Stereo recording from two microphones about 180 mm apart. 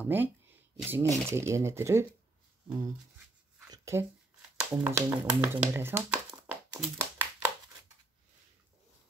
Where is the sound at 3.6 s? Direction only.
15° right (ahead or behind).